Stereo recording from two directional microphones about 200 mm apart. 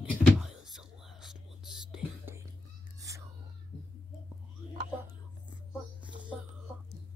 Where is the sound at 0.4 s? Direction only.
Centre (ahead or behind).